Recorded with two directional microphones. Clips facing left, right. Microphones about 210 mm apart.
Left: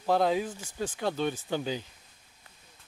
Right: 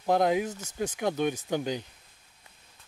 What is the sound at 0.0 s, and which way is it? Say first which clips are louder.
Speech: right 1 dB; 15° right (ahead or behind).